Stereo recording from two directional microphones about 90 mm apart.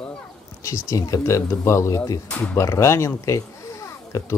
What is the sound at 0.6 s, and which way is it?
Speech, 35° left (ahead or behind).